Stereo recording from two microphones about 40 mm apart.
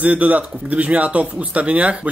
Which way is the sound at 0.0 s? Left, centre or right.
Right.